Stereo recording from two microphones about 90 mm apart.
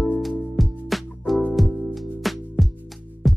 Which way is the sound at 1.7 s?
15° right (ahead or behind).